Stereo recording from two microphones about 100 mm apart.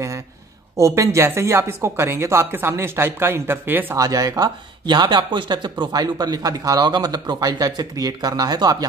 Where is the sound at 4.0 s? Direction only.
35° right (ahead or behind).